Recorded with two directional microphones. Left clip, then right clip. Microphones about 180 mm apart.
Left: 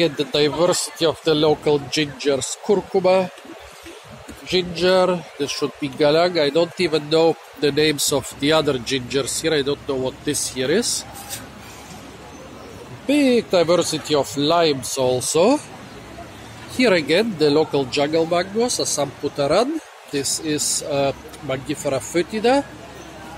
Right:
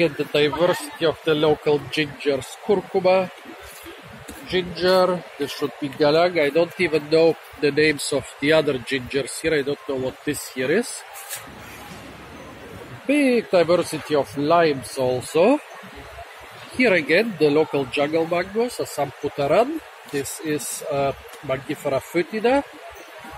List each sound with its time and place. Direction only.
0.4 s speech: 20° left (ahead or behind)
4.5 s speech: 25° left (ahead or behind)
13.0 s speech: 15° left (ahead or behind)
16.7 s speech: 15° left (ahead or behind)